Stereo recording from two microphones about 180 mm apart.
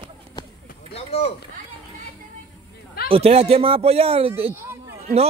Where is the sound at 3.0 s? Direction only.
30° right (ahead or behind).